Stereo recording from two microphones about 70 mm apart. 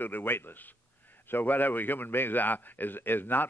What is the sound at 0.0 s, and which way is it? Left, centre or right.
Speech, left.